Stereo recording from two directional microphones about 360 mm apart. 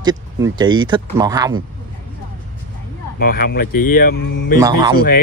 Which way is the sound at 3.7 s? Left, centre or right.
Left.